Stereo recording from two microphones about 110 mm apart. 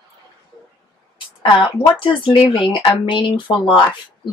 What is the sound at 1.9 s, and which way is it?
Speech, 50° left (ahead or behind).